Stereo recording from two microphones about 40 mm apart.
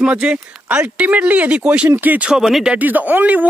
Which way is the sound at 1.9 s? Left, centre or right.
Right.